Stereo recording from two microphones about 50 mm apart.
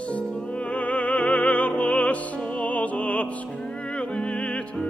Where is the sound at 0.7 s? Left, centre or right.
Left.